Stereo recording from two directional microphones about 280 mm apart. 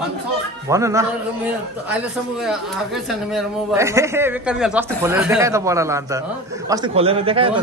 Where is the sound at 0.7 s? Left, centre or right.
Centre.